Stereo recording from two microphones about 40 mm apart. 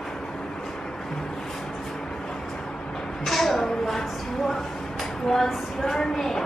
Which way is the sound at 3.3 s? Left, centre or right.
Centre.